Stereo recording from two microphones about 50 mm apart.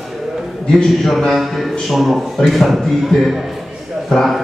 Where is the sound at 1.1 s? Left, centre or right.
Centre.